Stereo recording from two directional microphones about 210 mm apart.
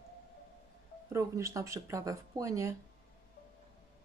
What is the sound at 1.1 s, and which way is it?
Speech, 15° right (ahead or behind).